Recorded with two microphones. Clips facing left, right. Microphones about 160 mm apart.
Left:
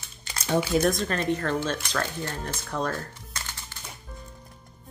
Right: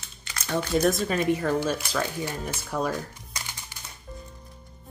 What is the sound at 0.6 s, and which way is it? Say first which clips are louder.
Speech: right 3 dB; centre (ahead or behind).